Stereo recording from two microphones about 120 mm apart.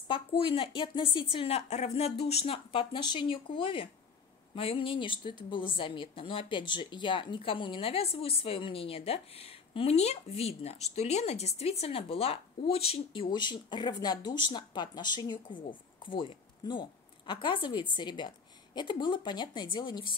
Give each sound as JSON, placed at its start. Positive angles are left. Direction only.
{"t": 0.1, "sound": "a woman's voice", "side_deg": 50}